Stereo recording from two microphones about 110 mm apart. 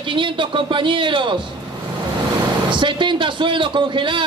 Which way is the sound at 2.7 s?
45° right (ahead or behind).